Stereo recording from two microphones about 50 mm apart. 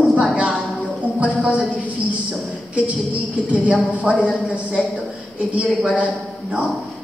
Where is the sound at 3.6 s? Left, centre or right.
Right.